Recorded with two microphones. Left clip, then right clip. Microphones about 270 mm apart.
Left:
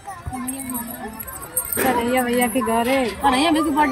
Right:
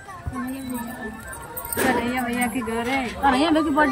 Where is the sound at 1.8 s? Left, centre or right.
Centre.